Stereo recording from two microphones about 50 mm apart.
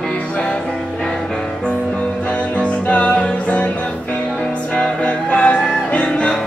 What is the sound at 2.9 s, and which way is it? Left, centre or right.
Music, left.